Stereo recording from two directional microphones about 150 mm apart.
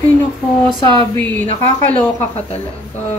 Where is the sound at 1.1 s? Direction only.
10° left (ahead or behind).